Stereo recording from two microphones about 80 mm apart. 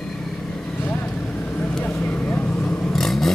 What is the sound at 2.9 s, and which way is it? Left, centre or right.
Vehicle, centre.